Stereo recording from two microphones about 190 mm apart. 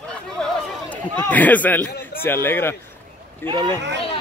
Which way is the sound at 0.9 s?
10° left (ahead or behind).